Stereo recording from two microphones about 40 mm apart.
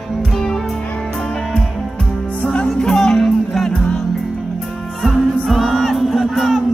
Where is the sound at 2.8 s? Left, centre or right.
Centre.